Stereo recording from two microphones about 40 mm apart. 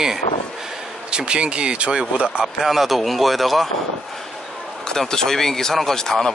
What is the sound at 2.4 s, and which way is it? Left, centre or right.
Speech, centre.